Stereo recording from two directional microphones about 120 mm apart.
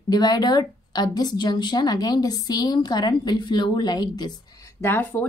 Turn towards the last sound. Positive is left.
turn(degrees=20)  # may be behind; listen again after turning